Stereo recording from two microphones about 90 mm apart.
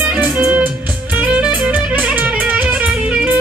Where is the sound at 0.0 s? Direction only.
20° right (ahead or behind).